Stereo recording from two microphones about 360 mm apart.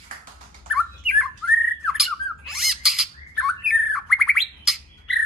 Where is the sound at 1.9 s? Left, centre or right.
Centre.